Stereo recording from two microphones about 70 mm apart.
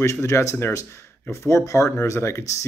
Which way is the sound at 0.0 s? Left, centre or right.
Left.